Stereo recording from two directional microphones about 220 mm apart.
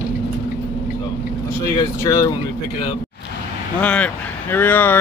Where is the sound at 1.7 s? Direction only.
15° left (ahead or behind).